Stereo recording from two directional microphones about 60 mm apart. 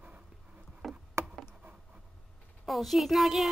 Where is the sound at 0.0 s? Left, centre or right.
Right.